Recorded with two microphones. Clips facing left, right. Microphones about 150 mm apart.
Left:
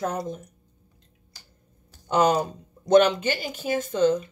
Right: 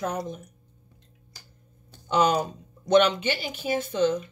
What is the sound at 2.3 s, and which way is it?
Speech, 45° left (ahead or behind).